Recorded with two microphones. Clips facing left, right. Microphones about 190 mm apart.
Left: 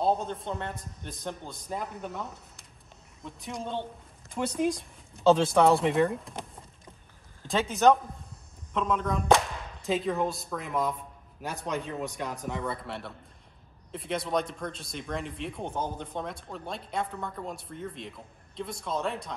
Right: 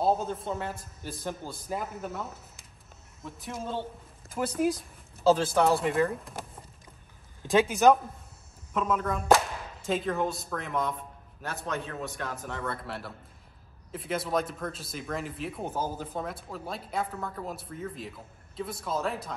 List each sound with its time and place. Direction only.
0.0 s speech: 5° right (ahead or behind)
7.4 s speech: centre (ahead or behind)
11.6 s a man's voice: 15° left (ahead or behind)
12.6 s speech: centre (ahead or behind)